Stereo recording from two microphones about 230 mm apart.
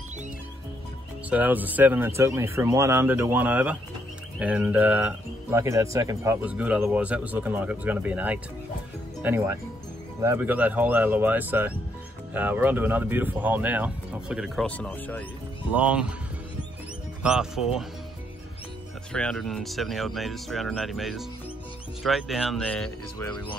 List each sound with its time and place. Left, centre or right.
1.3 s speech: centre
15.7 s speech: centre
17.2 s speech: centre
19.1 s speech: centre